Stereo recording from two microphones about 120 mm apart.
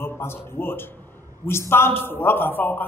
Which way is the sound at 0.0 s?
20° left (ahead or behind).